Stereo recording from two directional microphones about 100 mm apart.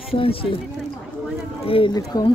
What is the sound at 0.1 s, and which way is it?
Speech, 65° left (ahead or behind).